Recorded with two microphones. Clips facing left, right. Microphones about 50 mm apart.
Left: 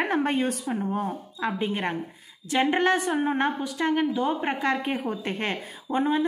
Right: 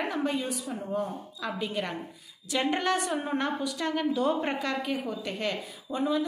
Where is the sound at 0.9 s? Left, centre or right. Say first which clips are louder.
Left 3 dB; left.